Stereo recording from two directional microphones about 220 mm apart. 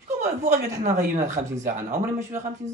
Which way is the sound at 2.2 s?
10° right (ahead or behind).